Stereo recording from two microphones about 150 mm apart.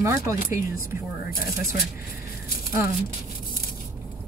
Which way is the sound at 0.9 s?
75° left (ahead or behind).